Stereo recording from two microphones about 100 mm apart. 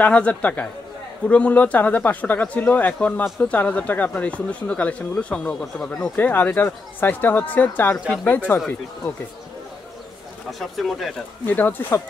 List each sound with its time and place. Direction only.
0.0 s speech: 15° left (ahead or behind)
6.1 s speech: 15° left (ahead or behind)
10.6 s speech: centre (ahead or behind)
11.4 s speech: 15° left (ahead or behind)